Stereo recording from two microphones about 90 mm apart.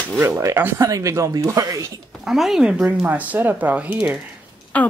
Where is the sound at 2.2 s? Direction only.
5° right (ahead or behind).